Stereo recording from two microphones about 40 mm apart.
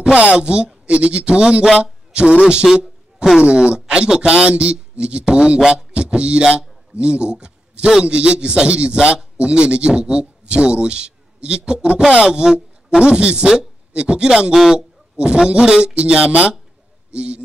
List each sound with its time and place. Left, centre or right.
0.1 s speech: right
2.6 s a sound: centre
3.4 s speech: right
5.9 s a sound: right
7.0 s a man's voice: right
13.0 s speech: right
14.5 s a man's voice: centre
15.4 s speech: right